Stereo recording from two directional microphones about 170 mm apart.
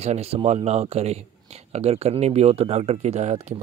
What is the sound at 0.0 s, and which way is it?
Speech, 40° right (ahead or behind).